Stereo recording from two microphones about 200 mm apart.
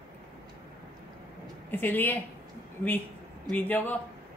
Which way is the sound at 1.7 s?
10° left (ahead or behind).